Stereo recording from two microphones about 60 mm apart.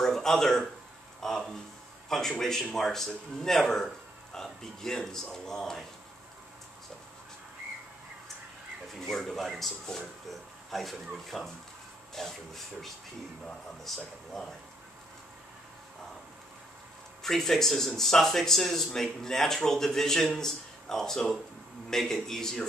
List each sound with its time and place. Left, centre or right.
0.0 s a sound: centre
1.2 s speech: centre
9.0 s speech: centre
17.2 s speech: centre